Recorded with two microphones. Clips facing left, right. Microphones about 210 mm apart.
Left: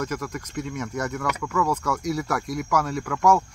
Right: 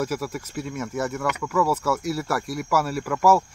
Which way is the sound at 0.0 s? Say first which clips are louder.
Right 2 dB; 5° right (ahead or behind).